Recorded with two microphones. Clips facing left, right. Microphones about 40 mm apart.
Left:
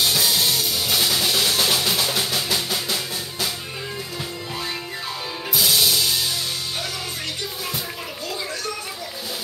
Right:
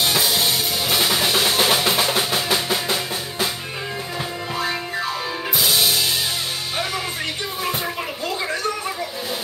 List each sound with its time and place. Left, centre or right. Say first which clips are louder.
0.1 s music: right 1 dB; centre
5.6 s music: even; centre